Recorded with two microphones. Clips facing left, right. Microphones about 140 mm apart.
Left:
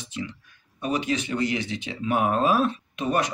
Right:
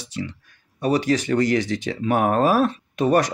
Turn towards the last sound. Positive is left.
turn(degrees=-40)  # may be behind; listen again after turning